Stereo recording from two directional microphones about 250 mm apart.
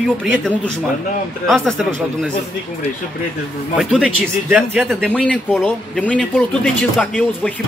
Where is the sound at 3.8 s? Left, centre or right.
Centre.